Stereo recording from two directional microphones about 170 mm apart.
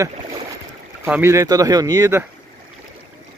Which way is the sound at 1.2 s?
20° right (ahead or behind).